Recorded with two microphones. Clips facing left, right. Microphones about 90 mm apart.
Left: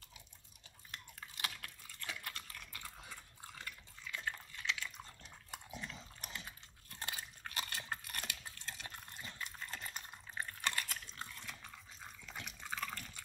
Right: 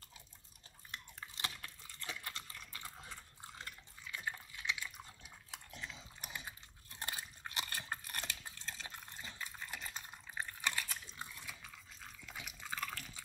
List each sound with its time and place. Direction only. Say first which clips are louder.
0.9 s chewing: right 1 dB; 25° right (ahead or behind); by 5.3 s 10° right (ahead or behind)
5.5 s dog: left 2 dB; 5° left (ahead or behind)
6.3 s chewing: right 3 dB; 20° right (ahead or behind)
11.6 s a sound: left 1 dB; centre (ahead or behind)